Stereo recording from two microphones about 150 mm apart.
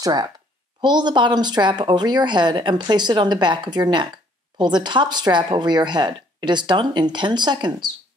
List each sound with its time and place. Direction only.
0.0 s speech: 25° right (ahead or behind)